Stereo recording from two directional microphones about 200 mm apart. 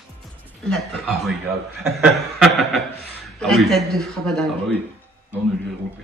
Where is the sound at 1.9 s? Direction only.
Centre (ahead or behind).